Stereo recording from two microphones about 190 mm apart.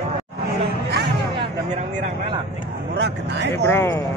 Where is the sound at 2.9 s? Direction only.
60° right (ahead or behind).